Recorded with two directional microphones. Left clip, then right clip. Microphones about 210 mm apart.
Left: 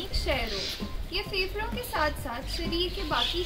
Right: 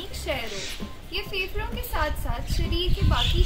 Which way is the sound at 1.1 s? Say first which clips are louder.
Right 1 dB; centre (ahead or behind).